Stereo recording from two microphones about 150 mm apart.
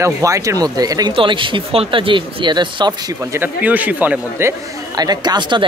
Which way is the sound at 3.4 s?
10° right (ahead or behind).